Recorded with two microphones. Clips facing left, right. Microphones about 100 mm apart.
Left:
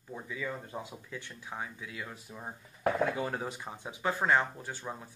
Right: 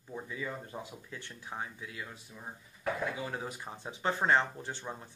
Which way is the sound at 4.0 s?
20° right (ahead or behind).